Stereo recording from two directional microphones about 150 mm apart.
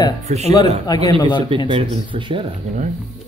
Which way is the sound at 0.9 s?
30° left (ahead or behind).